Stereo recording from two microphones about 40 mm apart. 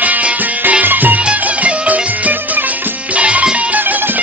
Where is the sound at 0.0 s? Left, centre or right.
Right.